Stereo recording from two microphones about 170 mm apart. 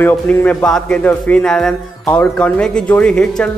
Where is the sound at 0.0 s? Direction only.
10° left (ahead or behind).